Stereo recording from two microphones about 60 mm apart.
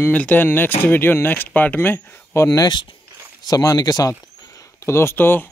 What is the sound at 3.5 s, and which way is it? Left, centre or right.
Speech, left.